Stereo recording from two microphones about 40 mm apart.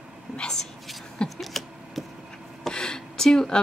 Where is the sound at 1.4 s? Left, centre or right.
Centre.